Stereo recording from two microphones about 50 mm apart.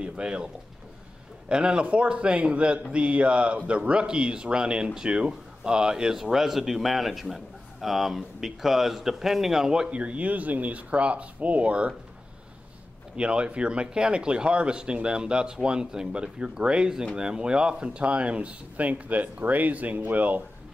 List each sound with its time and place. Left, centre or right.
0.0 s speech: centre
1.5 s speech: centre
9.8 s speech: right
13.1 s speech: centre